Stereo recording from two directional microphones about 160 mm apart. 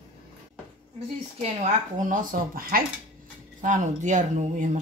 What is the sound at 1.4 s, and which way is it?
Speech, 50° right (ahead or behind).